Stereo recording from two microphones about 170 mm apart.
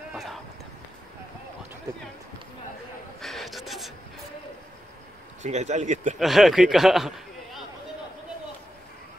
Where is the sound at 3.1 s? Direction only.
Centre (ahead or behind).